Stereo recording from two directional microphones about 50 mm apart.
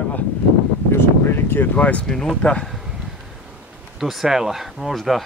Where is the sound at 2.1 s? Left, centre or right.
Centre.